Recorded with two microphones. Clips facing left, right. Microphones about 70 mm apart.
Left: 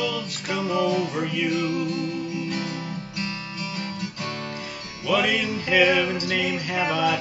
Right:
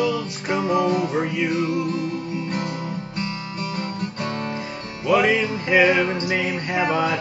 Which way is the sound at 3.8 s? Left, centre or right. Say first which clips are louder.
Right 4 dB; right.